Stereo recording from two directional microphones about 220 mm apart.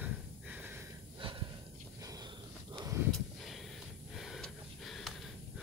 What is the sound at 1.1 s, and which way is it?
Snort, 20° right (ahead or behind).